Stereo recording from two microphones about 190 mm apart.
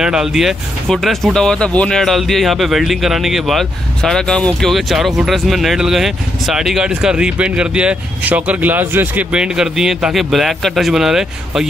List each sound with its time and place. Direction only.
0.0 s speech: 5° right (ahead or behind)